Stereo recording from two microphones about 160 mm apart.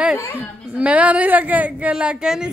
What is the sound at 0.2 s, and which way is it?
Speech, 15° left (ahead or behind).